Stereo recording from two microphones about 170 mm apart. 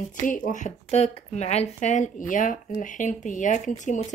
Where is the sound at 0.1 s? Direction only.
50° left (ahead or behind).